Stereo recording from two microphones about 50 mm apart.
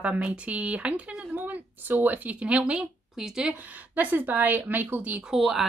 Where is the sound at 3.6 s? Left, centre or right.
Right.